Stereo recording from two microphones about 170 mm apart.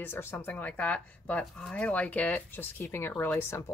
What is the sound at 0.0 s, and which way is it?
Speech, 10° left (ahead or behind).